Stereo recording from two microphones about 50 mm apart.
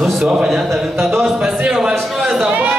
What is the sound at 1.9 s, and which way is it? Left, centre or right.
Speech, centre.